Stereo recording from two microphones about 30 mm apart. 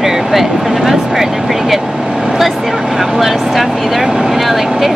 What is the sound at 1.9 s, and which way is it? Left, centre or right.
Vehicle, right.